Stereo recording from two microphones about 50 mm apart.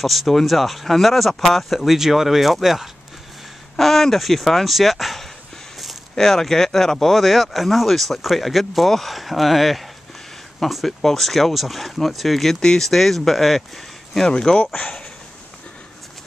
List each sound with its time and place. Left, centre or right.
0.0 s speech: centre
14.2 s speech: centre